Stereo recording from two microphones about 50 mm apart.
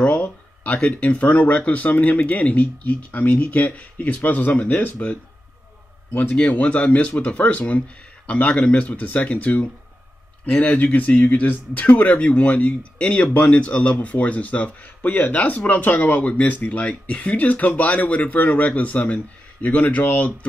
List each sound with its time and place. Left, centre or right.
0.0 s a sound: left
1.7 s speech: left
6.1 s speech: left